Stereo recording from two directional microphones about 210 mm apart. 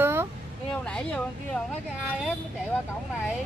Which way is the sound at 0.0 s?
10° right (ahead or behind).